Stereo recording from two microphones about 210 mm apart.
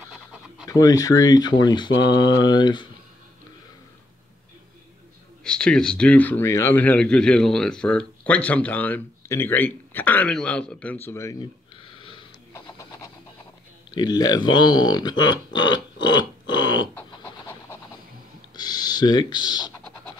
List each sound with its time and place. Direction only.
0.7 s speech: 15° left (ahead or behind)
5.4 s a man's voice: 5° left (ahead or behind)
12.0 s wheeze: 25° left (ahead or behind)
12.6 s a sound: 15° left (ahead or behind)
13.9 s speech: 20° left (ahead or behind)
15.5 s a sound: 20° left (ahead or behind)
16.9 s pant: 10° left (ahead or behind)
18.6 s speech: 20° left (ahead or behind)